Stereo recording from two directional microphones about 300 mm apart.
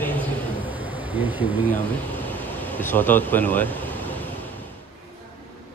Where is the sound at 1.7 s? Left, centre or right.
Centre.